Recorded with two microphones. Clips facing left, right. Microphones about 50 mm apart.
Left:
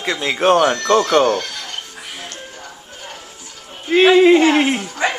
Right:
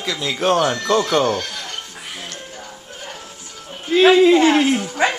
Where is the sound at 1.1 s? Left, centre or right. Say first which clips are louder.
Left 3 dB; centre.